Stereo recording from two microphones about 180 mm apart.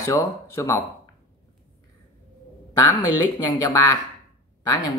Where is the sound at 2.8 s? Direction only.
20° left (ahead or behind).